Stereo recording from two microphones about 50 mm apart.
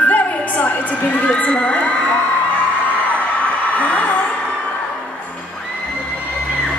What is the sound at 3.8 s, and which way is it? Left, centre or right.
Music, left.